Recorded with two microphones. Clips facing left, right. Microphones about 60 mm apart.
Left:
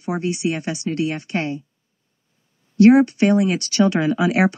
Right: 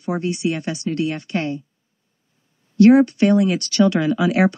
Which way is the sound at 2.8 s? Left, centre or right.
Centre.